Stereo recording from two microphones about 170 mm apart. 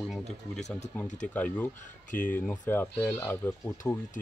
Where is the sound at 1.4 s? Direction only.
10° left (ahead or behind).